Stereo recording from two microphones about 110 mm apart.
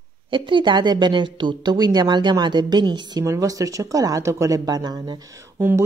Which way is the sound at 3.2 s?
30° right (ahead or behind).